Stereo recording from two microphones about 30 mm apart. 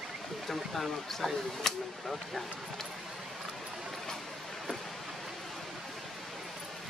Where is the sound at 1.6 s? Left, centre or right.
Centre.